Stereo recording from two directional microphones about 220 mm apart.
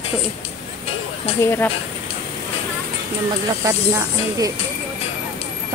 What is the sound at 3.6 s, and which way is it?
Speech, 15° right (ahead or behind).